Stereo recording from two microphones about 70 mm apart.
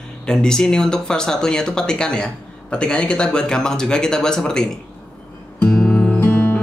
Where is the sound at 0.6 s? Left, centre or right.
Centre.